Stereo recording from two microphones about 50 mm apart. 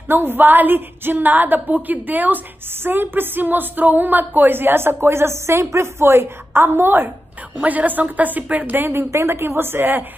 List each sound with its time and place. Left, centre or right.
0.1 s a woman's voice: right
7.6 s a woman's voice: right
9.1 s a woman's voice: right
9.6 s a woman's voice: right